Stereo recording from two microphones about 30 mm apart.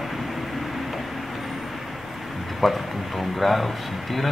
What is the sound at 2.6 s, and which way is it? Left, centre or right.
Speech, centre.